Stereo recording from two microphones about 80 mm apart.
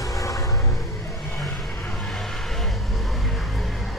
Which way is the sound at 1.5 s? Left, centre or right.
Centre.